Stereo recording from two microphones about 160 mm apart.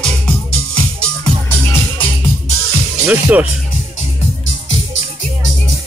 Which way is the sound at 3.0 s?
10° right (ahead or behind).